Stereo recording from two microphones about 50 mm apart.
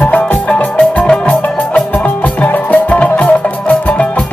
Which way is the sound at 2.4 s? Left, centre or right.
Left.